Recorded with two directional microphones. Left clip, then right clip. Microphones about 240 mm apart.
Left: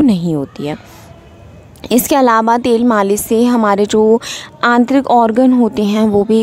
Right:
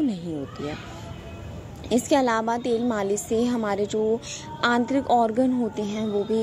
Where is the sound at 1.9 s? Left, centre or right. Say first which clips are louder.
Left 11 dB; left.